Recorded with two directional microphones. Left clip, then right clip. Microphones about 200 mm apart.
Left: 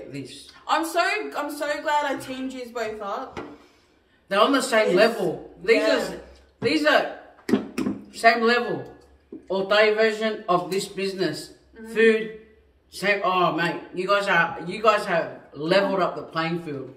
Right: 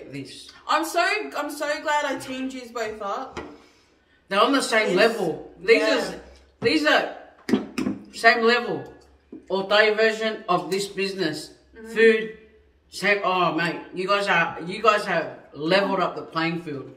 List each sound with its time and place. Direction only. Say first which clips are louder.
0.1 s speech: even; 5° left (ahead or behind)
0.7 s speech: right 1 dB; 15° right (ahead or behind)
4.3 s a man's voice: even; 5° left (ahead or behind)
6.6 s a sound: even; 5° left (ahead or behind)
9.5 s a man's voice: even; centre (ahead or behind)